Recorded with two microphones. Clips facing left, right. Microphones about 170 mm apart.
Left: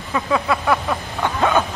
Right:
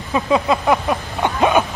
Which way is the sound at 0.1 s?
20° right (ahead or behind).